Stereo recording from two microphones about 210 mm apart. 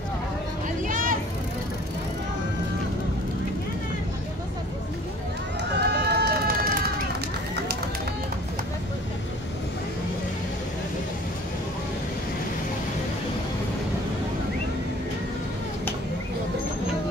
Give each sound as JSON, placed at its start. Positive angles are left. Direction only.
{"t": 0.8, "sound": "vehicle", "side_deg": -40}
{"t": 5.6, "sound": "run", "side_deg": -55}